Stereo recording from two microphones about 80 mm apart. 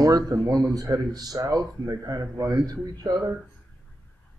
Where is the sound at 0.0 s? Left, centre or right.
Right.